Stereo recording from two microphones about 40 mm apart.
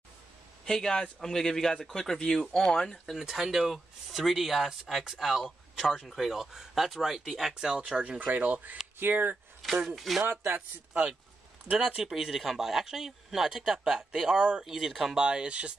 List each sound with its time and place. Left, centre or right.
0.7 s speech: centre
3.2 s speech: centre
7.7 s speech: right
8.2 s speech: right
9.8 s speech: centre
10.2 s speech: right
12.0 s speech: centre
15.1 s speech: right